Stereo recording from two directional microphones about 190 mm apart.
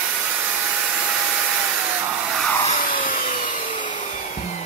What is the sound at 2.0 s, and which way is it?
Hair dryer, 5° right (ahead or behind).